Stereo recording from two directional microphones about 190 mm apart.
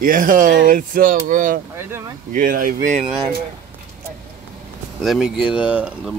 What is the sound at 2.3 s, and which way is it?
Speech, 45° right (ahead or behind).